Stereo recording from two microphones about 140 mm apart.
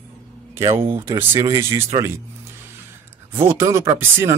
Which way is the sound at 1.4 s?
20° right (ahead or behind).